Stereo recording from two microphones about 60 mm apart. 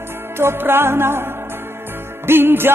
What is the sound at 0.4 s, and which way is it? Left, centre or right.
Music, right.